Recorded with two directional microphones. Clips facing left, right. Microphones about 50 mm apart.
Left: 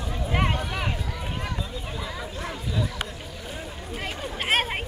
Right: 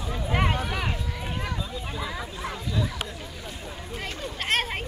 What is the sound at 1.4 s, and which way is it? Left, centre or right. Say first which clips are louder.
Chatter: even; centre.